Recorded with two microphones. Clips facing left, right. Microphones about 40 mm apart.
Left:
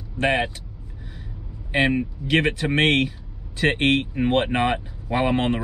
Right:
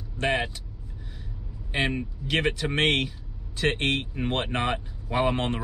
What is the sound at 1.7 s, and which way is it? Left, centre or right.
Speech, centre.